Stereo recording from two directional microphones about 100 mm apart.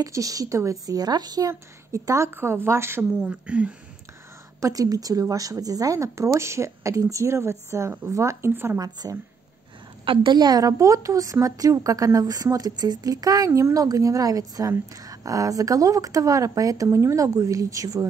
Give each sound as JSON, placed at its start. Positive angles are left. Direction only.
{"t": 0.0, "sound": "a woman's voice", "side_deg": -35}
{"t": 1.5, "sound": "a woman's voice", "side_deg": -30}
{"t": 3.2, "sound": "speech", "side_deg": -10}
{"t": 4.6, "sound": "a woman's voice", "side_deg": -35}
{"t": 8.7, "sound": "a woman's voice", "side_deg": -40}
{"t": 10.0, "sound": "a woman's voice", "side_deg": -50}